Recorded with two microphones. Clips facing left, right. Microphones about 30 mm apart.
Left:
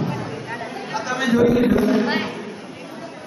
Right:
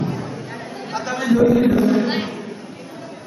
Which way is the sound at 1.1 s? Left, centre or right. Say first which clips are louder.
Right 1 dB; centre.